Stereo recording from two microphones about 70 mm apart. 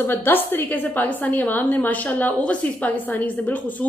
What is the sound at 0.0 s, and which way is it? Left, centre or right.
A woman's voice, left.